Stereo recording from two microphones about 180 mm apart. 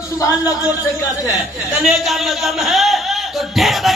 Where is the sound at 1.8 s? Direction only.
Centre (ahead or behind).